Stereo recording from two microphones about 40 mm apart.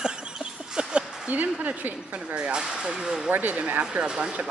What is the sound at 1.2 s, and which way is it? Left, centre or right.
Speech, right.